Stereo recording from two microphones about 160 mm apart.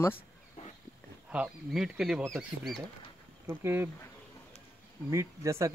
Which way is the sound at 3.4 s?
15° right (ahead or behind).